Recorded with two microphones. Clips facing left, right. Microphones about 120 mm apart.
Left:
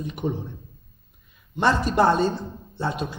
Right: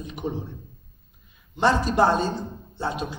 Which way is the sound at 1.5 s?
55° left (ahead or behind).